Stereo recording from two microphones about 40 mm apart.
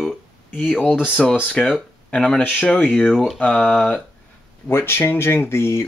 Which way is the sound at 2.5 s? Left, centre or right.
Left.